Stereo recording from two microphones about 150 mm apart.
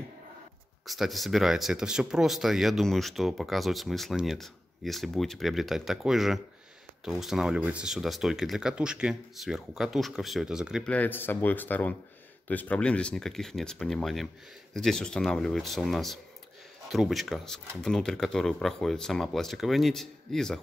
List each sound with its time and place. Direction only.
0.8 s speech: centre (ahead or behind)
10.9 s speech: 10° left (ahead or behind)